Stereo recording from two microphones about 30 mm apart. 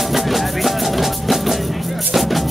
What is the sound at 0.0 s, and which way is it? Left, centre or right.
Music, centre.